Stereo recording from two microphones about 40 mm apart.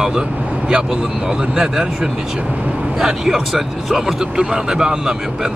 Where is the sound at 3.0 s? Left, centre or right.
Centre.